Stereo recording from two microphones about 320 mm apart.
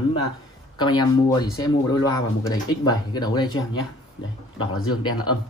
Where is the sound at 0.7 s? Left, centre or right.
Centre.